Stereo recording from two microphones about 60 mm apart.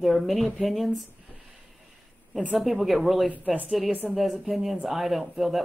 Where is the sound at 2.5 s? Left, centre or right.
Centre.